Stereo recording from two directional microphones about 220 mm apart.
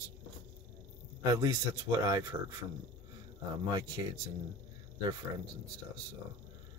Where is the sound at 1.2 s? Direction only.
15° right (ahead or behind).